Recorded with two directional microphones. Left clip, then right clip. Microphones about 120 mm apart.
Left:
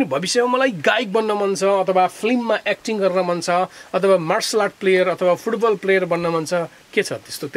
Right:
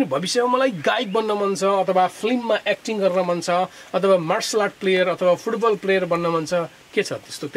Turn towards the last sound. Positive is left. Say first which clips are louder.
# left 2 dB
turn(degrees=40)  # may be behind; listen again after turning